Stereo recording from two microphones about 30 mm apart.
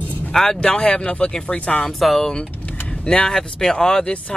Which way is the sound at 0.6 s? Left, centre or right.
Left.